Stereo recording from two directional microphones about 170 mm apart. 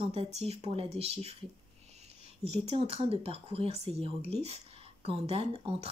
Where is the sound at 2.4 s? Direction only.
40° right (ahead or behind).